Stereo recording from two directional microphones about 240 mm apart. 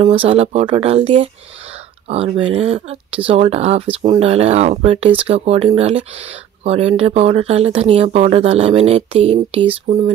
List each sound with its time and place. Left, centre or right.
0.0 s speech: right